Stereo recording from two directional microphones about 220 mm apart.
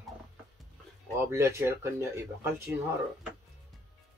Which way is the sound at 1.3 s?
15° right (ahead or behind).